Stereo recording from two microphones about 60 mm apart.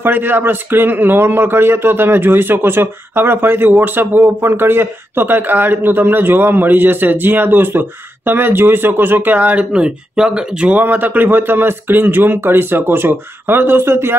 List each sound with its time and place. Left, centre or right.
0.0 s a man's voice: right
9.7 s speech: centre
10.8 s a man's voice: right